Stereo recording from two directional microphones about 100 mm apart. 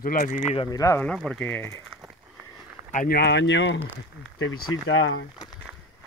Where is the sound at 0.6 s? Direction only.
40° left (ahead or behind).